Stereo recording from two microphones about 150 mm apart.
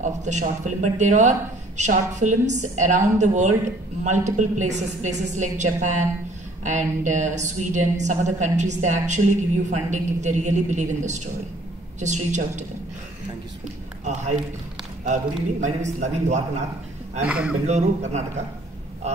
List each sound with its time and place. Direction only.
0.0 s a woman's voice: 50° right (ahead or behind)
14.0 s a woman's voice: 50° right (ahead or behind)
15.6 s a woman's voice: 50° right (ahead or behind)
17.3 s a man's voice: 10° right (ahead or behind)
17.6 s a woman's voice: 50° right (ahead or behind)